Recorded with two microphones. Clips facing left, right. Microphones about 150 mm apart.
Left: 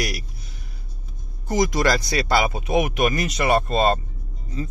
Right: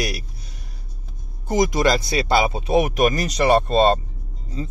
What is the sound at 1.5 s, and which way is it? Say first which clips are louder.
Speech: right 2 dB; 20° right (ahead or behind).